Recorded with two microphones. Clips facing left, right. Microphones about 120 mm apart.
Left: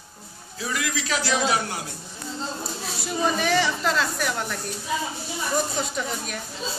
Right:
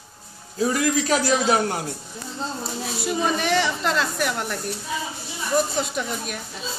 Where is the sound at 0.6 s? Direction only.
40° right (ahead or behind).